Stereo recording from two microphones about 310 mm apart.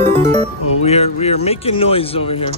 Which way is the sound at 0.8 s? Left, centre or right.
Centre.